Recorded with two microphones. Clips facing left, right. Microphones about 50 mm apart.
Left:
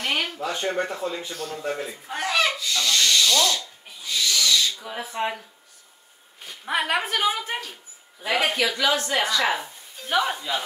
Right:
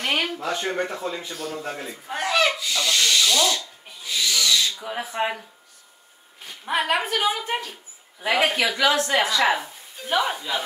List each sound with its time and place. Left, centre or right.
0.0 s a sound: centre
0.7 s a woman's voice: centre
3.5 s owl: centre
5.1 s a woman's voice: centre
6.4 s a woman's voice: centre